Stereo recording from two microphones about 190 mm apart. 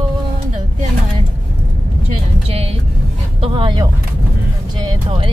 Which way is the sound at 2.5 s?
30° right (ahead or behind).